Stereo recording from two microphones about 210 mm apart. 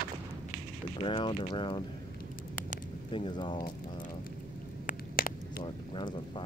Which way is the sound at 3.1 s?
25° left (ahead or behind).